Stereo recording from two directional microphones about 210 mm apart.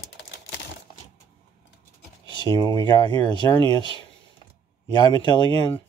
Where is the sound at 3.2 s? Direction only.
25° right (ahead or behind).